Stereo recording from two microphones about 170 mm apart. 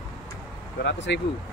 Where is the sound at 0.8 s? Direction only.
90° left.